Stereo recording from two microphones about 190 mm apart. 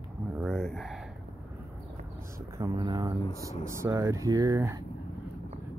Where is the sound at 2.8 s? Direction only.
20° right (ahead or behind).